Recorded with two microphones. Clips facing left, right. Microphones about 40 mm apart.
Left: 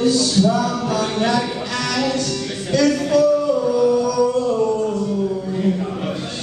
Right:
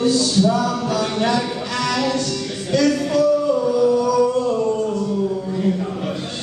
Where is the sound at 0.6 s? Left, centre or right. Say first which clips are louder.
Even; centre.